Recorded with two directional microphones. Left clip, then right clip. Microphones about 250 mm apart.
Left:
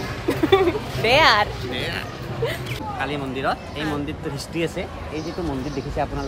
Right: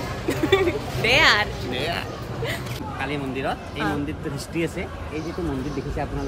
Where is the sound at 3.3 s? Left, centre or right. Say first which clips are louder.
Left 3 dB; centre.